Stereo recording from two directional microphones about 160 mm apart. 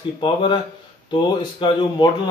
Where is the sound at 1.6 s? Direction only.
30° left (ahead or behind).